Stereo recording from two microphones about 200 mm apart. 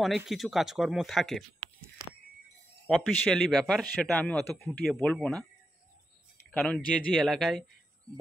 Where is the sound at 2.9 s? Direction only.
Centre (ahead or behind).